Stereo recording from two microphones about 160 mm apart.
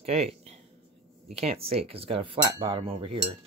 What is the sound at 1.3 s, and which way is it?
Cutlery, 40° right (ahead or behind).